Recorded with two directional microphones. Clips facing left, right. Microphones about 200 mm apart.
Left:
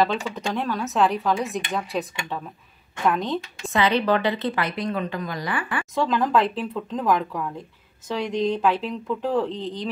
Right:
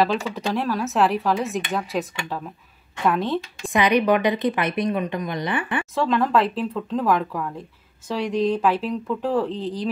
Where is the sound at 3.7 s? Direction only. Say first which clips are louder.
Right 2 dB; 15° right (ahead or behind).